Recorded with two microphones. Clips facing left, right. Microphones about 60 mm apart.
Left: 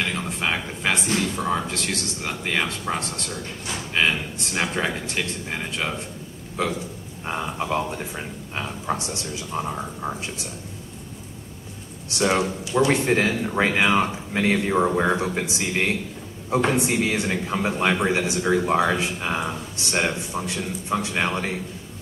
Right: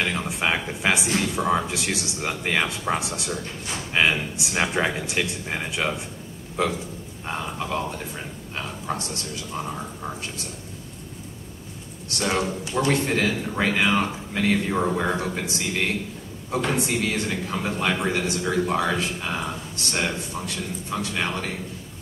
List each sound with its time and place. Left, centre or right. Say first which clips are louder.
0.0 s speech: right 1 dB; centre
6.6 s burping: right 1 dB; centre
8.5 s speech: left 2 dB; centre
12.2 s speech: left 3 dB; centre